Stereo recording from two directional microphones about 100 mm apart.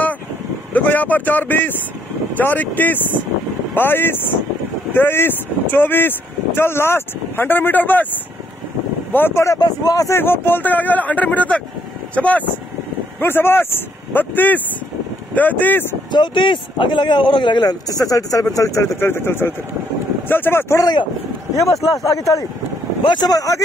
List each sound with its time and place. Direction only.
0.7 s speech: 15° left (ahead or behind)
9.1 s speech: 25° left (ahead or behind)
10.1 s speech: 20° left (ahead or behind)
16.1 s speech: 50° left (ahead or behind); by 20.8 s 25° left (ahead or behind)
20.8 s speech: 50° left (ahead or behind)
21.9 s speech: 35° left (ahead or behind)